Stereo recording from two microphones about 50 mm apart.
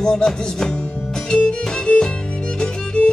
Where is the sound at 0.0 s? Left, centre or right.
Centre.